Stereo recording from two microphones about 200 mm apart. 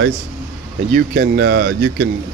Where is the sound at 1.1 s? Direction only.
55° right (ahead or behind).